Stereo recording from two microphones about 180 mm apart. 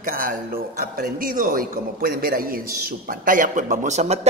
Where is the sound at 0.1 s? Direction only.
50° right (ahead or behind).